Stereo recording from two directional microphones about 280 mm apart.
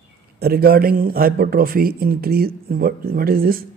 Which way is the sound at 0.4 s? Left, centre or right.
Right.